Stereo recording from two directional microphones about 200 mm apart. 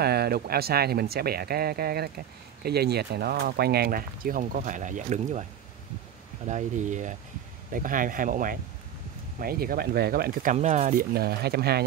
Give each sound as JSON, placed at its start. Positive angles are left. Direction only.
{"t": 0.0, "sound": "speech", "side_deg": -50}
{"t": 6.4, "sound": "speech", "side_deg": -35}